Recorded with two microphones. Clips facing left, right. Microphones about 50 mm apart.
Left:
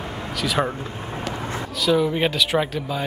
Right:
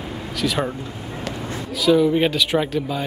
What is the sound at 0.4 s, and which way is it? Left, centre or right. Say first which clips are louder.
Speech: even; centre.